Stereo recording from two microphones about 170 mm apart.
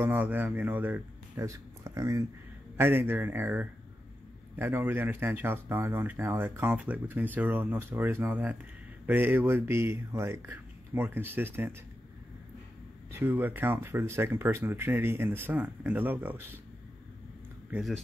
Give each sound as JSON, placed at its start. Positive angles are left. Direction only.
{"t": 0.0, "sound": "speech", "side_deg": -10}
{"t": 13.1, "sound": "speech", "side_deg": -10}
{"t": 17.6, "sound": "speech", "side_deg": -5}